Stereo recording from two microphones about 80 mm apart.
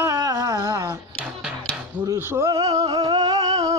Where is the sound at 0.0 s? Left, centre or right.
Right.